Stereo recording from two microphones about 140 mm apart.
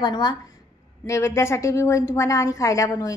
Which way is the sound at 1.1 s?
20° left (ahead or behind).